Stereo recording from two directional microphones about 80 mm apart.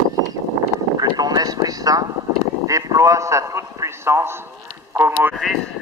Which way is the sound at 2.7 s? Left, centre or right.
Right.